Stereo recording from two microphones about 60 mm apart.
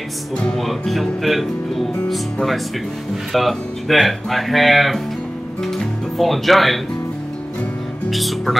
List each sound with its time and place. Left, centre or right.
0.6 s speech: centre
3.3 s speech: centre
8.1 s speech: centre